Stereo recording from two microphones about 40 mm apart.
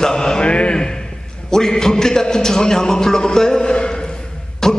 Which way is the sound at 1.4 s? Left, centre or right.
Centre.